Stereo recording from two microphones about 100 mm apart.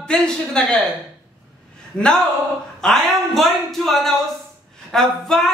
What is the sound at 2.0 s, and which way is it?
A man's voice, 10° left (ahead or behind).